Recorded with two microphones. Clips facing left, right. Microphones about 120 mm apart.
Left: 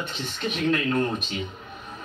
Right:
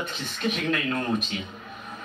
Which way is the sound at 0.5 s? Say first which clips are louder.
Left 6 dB; 25° left (ahead or behind).